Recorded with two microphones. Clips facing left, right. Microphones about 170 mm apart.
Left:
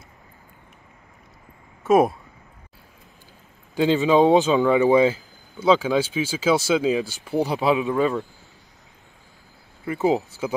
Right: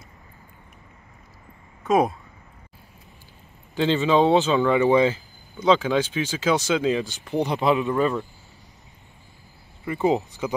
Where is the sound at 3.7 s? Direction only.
10° left (ahead or behind).